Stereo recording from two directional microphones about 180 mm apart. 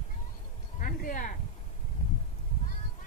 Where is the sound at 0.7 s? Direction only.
50° left (ahead or behind).